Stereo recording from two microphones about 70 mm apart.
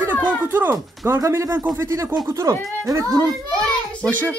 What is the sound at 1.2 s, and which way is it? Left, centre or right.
Speech, right.